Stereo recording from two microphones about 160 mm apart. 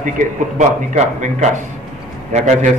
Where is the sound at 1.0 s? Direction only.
50° right (ahead or behind).